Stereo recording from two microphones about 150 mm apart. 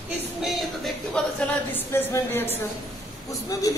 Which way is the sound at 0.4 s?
Centre (ahead or behind).